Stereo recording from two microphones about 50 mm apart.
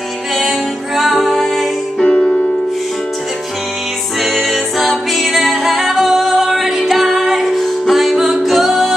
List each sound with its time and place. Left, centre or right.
0.4 s music: centre
2.0 s music: centre
4.2 s music: centre